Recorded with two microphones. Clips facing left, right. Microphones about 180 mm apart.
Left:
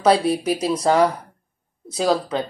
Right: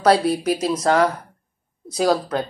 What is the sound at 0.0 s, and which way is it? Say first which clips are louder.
Speech: even; centre (ahead or behind).